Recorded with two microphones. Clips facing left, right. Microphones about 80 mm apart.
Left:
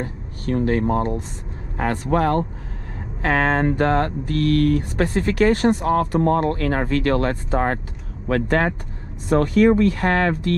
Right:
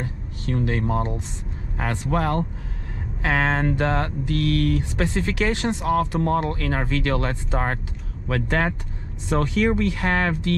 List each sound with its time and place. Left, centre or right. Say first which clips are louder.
0.0 s a man's voice: left 3 dB; left